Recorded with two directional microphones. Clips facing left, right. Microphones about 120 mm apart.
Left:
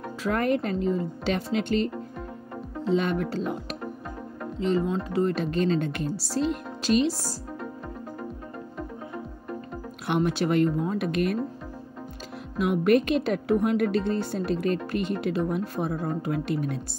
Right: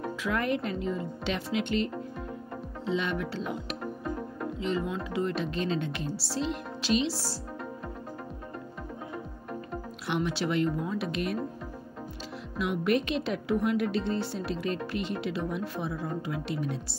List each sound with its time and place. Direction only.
0.2 s speech: 45° left (ahead or behind)
2.9 s speech: 45° left (ahead or behind)
4.6 s speech: 40° left (ahead or behind)
10.0 s speech: 50° left (ahead or behind)
12.5 s speech: 50° left (ahead or behind)